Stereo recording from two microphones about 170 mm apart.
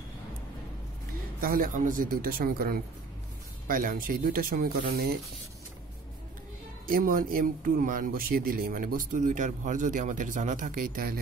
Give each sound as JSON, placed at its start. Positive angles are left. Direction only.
{"t": 1.4, "sound": "speech", "side_deg": -55}
{"t": 6.9, "sound": "speech", "side_deg": -55}